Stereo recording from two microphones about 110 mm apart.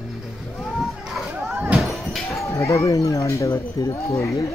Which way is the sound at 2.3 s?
30° left (ahead or behind).